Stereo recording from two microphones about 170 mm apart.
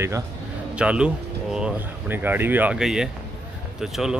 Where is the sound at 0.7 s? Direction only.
5° right (ahead or behind).